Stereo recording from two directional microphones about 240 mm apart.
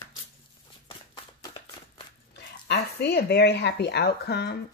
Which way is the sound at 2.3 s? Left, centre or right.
Left.